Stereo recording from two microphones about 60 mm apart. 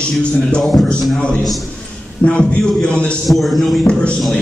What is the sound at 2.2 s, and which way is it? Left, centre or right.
Speech, left.